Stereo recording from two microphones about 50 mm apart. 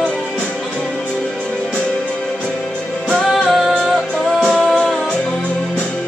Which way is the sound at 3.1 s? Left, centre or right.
Centre.